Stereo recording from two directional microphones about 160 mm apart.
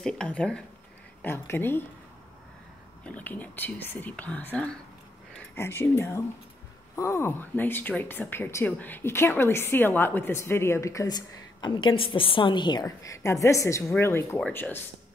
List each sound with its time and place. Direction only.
0.0 s speech: 5° left (ahead or behind)
3.0 s speech: 10° left (ahead or behind)